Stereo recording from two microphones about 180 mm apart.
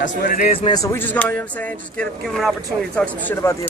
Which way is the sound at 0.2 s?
55° left (ahead or behind).